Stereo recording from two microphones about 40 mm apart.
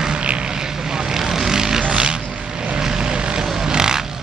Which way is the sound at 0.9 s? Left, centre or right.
Centre.